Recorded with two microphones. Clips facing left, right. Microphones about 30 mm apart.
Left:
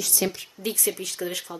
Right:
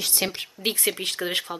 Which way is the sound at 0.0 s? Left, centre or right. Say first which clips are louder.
Even; right.